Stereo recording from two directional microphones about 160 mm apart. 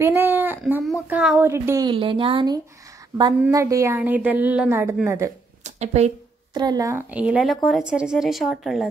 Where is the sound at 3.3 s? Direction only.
20° right (ahead or behind).